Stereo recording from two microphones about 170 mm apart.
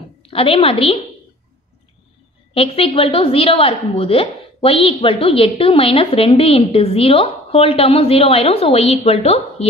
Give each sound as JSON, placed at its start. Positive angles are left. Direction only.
{"t": 0.2, "sound": "a woman's voice", "side_deg": 30}
{"t": 2.5, "sound": "a woman's voice", "side_deg": 35}